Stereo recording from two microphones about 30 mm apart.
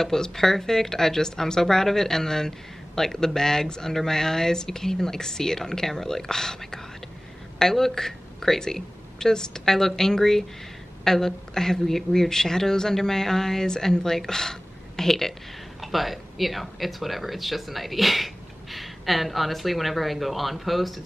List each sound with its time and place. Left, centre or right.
0.0 s speech: centre
15.8 s speech: centre